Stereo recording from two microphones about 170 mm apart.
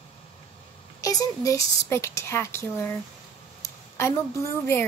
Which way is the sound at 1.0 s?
20° left (ahead or behind).